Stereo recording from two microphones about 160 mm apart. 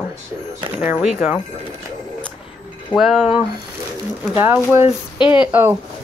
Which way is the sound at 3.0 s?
5° right (ahead or behind).